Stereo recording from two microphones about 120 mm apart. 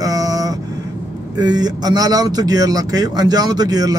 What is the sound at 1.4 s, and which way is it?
Speech, 35° right (ahead or behind).